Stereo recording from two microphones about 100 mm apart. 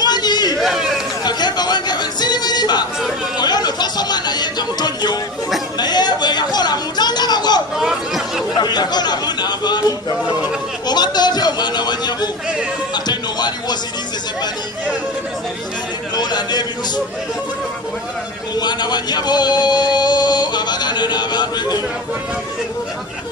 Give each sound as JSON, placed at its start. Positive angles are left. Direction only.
{"t": 0.0, "sound": "chatter", "side_deg": 45}
{"t": 0.6, "sound": "a sound", "side_deg": -5}
{"t": 1.2, "sound": "music", "side_deg": 45}
{"t": 3.3, "sound": "speech", "side_deg": 45}
{"t": 5.8, "sound": "chatter", "side_deg": 45}
{"t": 7.7, "sound": "chatter", "side_deg": -5}
{"t": 8.5, "sound": "a man's voice", "side_deg": 45}
{"t": 12.9, "sound": "music", "side_deg": 45}
{"t": 16.2, "sound": "a man's voice", "side_deg": 45}
{"t": 18.5, "sound": "a man's voice", "side_deg": 45}